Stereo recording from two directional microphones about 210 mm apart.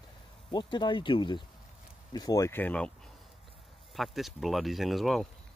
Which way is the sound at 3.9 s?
Centre (ahead or behind).